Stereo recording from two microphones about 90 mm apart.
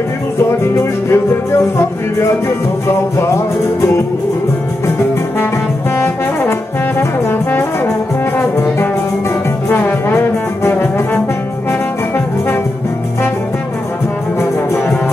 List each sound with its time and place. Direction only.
1.1 s music: 25° left (ahead or behind)
5.9 s brass instrument: 25° left (ahead or behind)
8.4 s music: 30° left (ahead or behind)